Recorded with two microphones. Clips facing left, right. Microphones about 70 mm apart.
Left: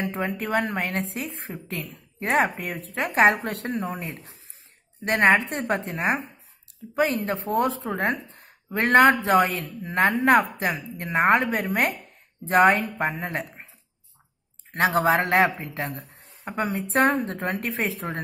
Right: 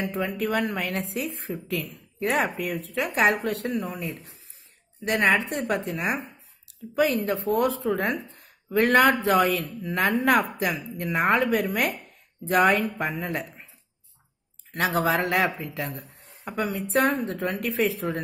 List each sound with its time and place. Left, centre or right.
0.0 s a woman's voice: left
14.7 s a woman's voice: left